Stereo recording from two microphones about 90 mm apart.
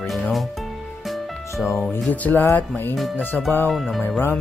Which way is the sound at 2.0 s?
15° left (ahead or behind).